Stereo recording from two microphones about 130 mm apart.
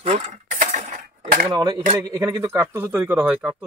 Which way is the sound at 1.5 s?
30° right (ahead or behind).